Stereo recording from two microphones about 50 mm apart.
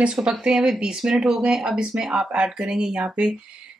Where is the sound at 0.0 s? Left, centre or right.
Right.